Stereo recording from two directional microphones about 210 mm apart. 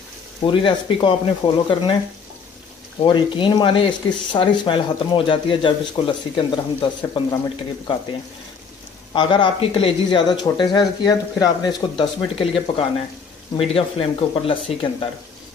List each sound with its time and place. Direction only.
0.4 s speech: 25° left (ahead or behind)
3.0 s speech: 25° left (ahead or behind)
9.1 s speech: 20° left (ahead or behind)